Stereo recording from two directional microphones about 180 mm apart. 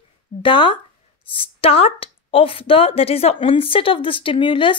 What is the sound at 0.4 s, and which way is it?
Speech, 30° left (ahead or behind).